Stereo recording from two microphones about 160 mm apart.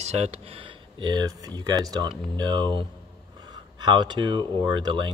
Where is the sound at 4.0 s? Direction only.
30° right (ahead or behind).